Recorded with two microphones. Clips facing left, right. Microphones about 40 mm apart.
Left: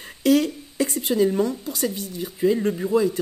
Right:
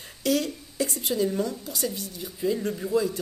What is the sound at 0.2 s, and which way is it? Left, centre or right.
A woman's voice, left.